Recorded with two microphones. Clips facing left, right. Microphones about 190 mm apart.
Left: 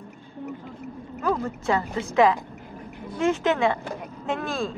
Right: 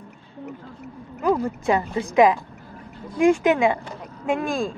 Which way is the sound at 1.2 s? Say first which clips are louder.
Right 4 dB; 15° right (ahead or behind).